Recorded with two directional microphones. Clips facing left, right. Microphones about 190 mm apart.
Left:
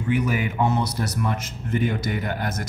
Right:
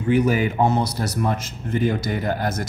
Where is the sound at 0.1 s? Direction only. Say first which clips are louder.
Right 5 dB; 35° right (ahead or behind).